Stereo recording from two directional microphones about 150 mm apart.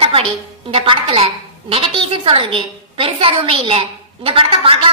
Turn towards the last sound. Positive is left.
turn(degrees=-35)  # may be behind; listen again after turning